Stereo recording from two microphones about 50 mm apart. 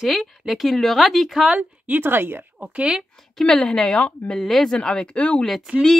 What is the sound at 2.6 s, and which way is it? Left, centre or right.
Speech, centre.